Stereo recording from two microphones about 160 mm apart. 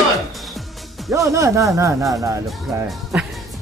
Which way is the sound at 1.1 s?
20° right (ahead or behind).